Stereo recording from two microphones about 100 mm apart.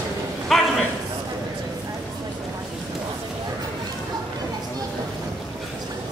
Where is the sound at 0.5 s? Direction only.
Centre (ahead or behind).